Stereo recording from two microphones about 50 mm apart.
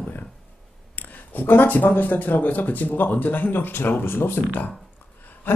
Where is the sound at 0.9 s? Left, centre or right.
Left.